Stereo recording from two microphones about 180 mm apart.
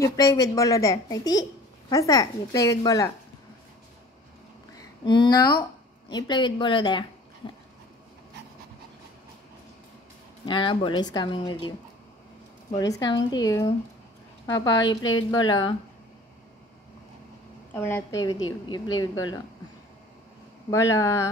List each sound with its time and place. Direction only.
0.0 s a woman's voice: 20° left (ahead or behind)
4.7 s a woman's voice: 25° left (ahead or behind)
10.4 s a woman's voice: 25° left (ahead or behind)
12.7 s a woman's voice: 20° left (ahead or behind)
17.7 s a woman's voice: 15° left (ahead or behind)
20.7 s speech: 15° left (ahead or behind)